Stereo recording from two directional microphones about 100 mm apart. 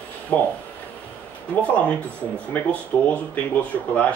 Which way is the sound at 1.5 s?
15° left (ahead or behind).